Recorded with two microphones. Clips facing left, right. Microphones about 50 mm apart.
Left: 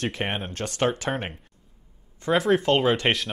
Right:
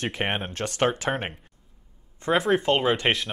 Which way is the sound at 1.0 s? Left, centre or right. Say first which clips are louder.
Right 1 dB; right.